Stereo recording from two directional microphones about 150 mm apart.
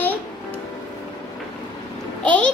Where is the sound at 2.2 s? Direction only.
10° left (ahead or behind).